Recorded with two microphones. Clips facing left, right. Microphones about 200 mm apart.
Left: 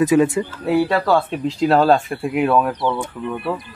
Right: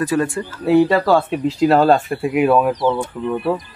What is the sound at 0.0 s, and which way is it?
Speech, 20° left (ahead or behind).